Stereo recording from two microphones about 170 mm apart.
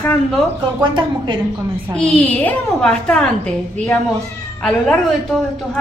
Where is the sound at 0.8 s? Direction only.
30° right (ahead or behind).